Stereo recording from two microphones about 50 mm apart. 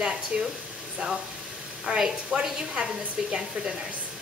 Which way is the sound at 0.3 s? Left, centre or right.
Centre.